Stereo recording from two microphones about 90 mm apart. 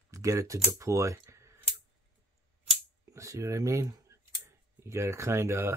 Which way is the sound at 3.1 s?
35° right (ahead or behind).